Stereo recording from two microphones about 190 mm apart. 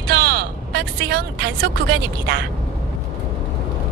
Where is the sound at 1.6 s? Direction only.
80° right.